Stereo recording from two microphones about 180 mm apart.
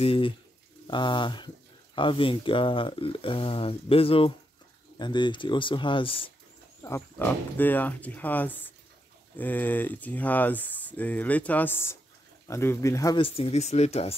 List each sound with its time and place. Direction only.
0.0 s speech: 30° left (ahead or behind)
6.8 s speech: 15° left (ahead or behind)
13.2 s speech: 35° left (ahead or behind)